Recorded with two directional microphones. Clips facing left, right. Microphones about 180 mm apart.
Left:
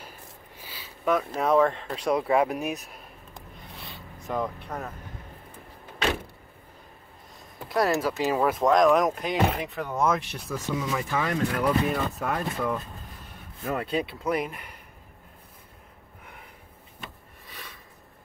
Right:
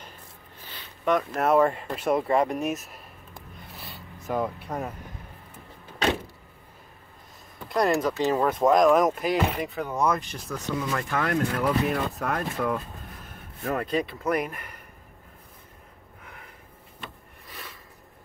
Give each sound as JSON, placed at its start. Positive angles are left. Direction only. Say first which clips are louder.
{"t": 0.6, "sound": "speech", "louder": "even", "side_deg": 10}
{"t": 3.7, "sound": "zipper", "louder": "even", "side_deg": 0}
{"t": 7.6, "sound": "speech", "louder": "right 1 dB", "side_deg": 0}
{"t": 13.7, "sound": "speech", "louder": "right 1 dB", "side_deg": 5}